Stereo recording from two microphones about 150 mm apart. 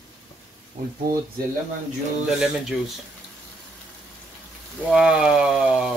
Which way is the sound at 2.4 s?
5° right (ahead or behind).